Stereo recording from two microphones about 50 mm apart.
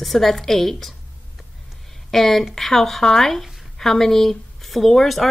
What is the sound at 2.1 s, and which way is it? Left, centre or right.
Speech, centre.